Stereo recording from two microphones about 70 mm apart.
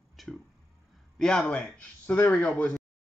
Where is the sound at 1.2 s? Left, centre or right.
Centre.